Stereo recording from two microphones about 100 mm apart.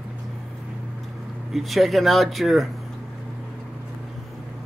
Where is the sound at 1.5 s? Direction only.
Centre (ahead or behind).